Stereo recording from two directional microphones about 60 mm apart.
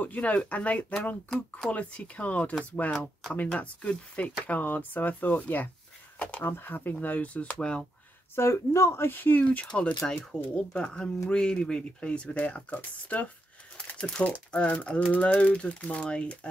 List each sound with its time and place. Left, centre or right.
0.0 s speech: left
8.4 s speech: left
13.7 s crumpling: centre
14.5 s speech: left